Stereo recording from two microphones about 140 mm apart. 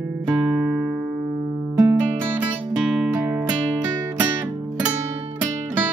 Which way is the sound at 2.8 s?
5° right (ahead or behind).